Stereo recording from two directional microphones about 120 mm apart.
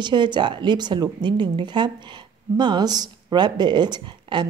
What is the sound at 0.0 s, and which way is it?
Speech, 40° right (ahead or behind).